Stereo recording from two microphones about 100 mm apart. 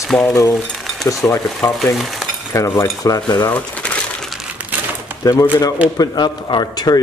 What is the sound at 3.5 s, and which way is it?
Speech, 15° left (ahead or behind).